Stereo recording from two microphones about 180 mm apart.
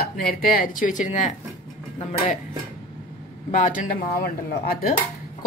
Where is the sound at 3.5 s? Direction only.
45° left (ahead or behind).